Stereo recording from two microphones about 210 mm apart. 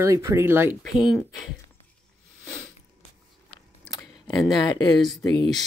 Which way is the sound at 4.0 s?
20° left (ahead or behind).